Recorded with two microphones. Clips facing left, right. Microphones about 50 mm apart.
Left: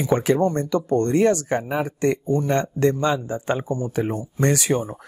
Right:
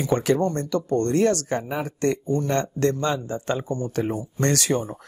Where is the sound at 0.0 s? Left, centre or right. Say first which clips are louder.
Left 2 dB; centre.